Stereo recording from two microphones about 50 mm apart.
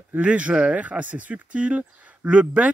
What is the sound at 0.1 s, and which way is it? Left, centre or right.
Speech, right.